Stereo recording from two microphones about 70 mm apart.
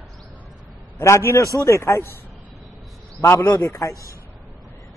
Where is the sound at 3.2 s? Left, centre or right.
Left.